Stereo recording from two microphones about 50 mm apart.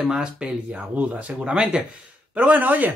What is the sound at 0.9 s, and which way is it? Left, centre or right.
Speech, right.